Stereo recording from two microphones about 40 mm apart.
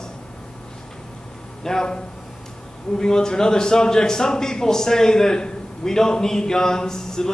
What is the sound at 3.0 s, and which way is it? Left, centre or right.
A man's voice, centre.